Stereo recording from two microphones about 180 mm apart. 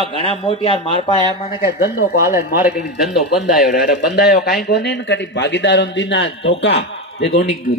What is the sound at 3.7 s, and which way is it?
A man's voice, 65° left (ahead or behind).